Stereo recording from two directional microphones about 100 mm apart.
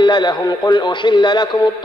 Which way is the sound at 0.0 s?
50° left (ahead or behind).